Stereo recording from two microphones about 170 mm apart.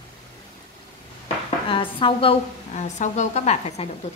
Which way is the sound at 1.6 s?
30° left (ahead or behind).